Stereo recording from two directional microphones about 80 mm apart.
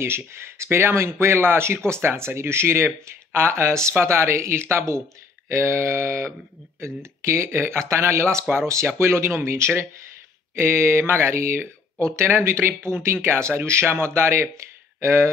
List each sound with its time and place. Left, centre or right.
0.3 s speech: right